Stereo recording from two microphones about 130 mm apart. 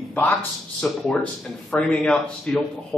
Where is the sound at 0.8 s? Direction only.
Centre (ahead or behind).